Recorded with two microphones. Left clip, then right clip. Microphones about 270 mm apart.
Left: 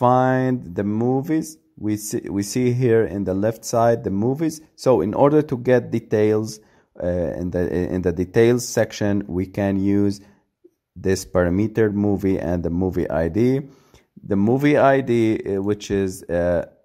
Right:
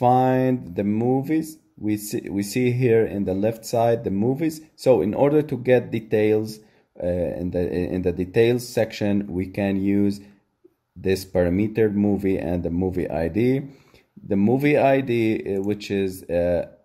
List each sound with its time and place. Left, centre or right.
0.0 s speech: left